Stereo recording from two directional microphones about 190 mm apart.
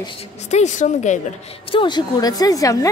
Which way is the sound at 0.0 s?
35° left (ahead or behind).